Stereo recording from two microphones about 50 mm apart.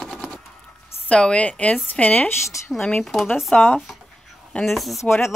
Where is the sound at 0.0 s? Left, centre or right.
Centre.